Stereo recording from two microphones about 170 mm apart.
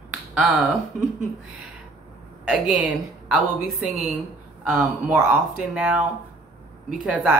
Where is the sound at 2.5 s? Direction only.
5° right (ahead or behind).